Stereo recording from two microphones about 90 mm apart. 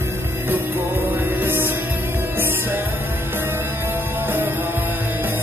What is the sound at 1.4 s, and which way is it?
Music, 20° right (ahead or behind).